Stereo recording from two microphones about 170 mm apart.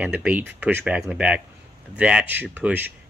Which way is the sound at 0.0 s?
10° right (ahead or behind).